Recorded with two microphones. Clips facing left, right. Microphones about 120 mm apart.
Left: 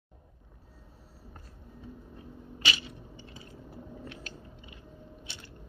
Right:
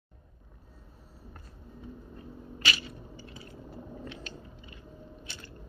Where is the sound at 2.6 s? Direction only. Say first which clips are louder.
Even; 20° left (ahead or behind).